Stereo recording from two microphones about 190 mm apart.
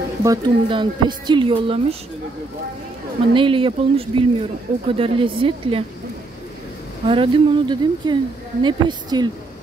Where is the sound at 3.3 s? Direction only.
25° right (ahead or behind).